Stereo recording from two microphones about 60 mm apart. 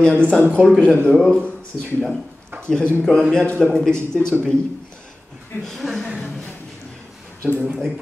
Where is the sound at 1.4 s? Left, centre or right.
Left.